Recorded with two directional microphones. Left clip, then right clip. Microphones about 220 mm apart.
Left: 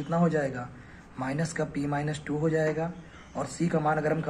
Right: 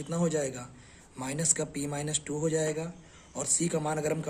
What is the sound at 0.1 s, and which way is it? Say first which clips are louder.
A man's voice: left 3 dB; 30° right (ahead or behind).